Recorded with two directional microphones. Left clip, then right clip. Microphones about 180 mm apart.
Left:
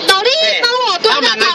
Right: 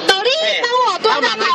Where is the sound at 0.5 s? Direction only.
20° left (ahead or behind).